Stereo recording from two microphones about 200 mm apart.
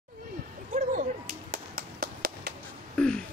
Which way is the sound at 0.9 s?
40° right (ahead or behind).